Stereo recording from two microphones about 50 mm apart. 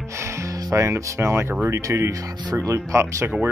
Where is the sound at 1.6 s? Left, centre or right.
Right.